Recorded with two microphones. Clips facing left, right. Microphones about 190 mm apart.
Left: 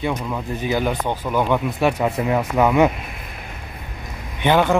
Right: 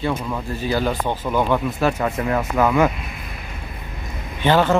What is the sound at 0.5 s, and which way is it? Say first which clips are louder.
Speech: even; 15° left (ahead or behind).